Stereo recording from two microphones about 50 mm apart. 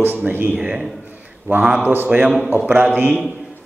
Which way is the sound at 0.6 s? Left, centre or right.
Centre.